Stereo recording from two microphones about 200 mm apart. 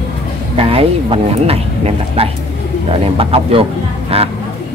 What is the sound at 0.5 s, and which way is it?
Speech, 30° right (ahead or behind).